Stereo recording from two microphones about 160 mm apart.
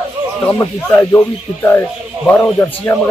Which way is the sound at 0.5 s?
15° left (ahead or behind).